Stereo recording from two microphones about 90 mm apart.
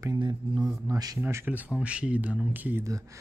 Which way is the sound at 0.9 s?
45° right (ahead or behind).